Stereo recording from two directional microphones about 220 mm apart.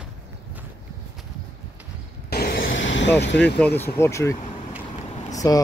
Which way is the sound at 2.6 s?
55° left (ahead or behind).